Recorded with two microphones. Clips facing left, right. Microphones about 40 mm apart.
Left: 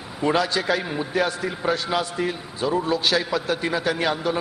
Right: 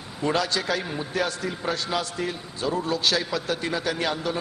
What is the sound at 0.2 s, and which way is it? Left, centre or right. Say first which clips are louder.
A man's voice: left 3 dB; centre.